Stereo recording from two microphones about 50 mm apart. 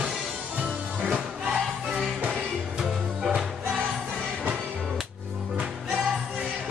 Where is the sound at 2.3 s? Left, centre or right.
Centre.